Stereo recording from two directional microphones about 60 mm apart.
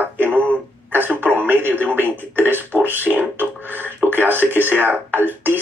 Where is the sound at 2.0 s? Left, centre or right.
Right.